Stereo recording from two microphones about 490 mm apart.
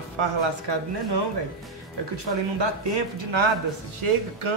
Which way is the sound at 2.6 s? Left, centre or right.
Right.